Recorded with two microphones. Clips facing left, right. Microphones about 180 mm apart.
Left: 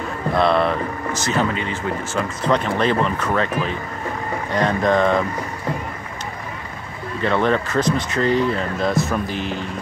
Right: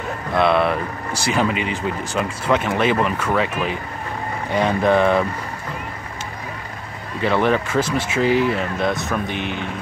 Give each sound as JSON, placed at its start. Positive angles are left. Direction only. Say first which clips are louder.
{"t": 0.4, "sound": "speech", "louder": "right 1 dB", "side_deg": -5}
{"t": 7.2, "sound": "speech", "louder": "right 1 dB", "side_deg": -5}
{"t": 9.3, "sound": "speech", "louder": "even", "side_deg": -65}